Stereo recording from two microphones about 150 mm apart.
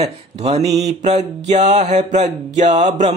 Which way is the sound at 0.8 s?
45° right (ahead or behind).